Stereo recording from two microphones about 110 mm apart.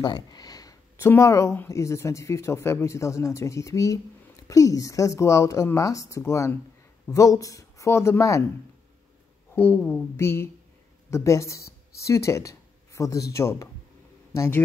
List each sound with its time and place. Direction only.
0.0 s a sound: 40° left (ahead or behind)
1.0 s speech: 25° left (ahead or behind)
9.6 s speech: 20° left (ahead or behind)